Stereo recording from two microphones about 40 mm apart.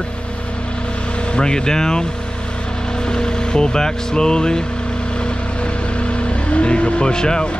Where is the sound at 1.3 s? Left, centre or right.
Centre.